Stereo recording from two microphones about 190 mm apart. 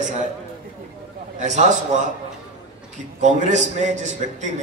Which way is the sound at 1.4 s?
40° right (ahead or behind).